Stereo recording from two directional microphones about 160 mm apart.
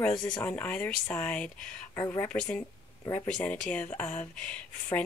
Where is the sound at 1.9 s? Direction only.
20° left (ahead or behind).